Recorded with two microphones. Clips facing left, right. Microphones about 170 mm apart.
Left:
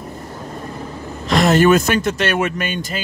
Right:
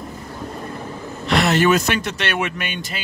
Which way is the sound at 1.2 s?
45° left (ahead or behind).